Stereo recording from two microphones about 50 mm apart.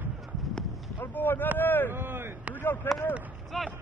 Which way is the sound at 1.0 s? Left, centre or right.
Left.